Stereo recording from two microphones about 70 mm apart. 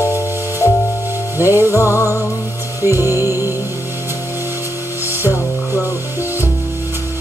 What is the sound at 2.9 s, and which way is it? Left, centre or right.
Music, right.